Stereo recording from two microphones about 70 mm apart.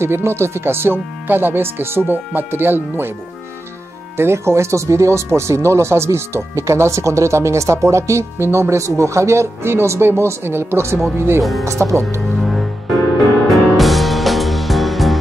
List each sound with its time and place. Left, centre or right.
0.0 s speech: right
4.2 s speech: right
12.4 s music: centre